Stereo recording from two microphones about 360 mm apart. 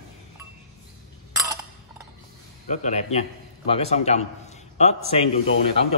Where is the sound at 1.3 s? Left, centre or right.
Centre.